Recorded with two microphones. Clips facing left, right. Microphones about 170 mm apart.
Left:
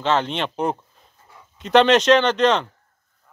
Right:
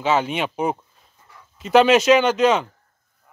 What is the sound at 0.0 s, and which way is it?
Speech, 10° right (ahead or behind).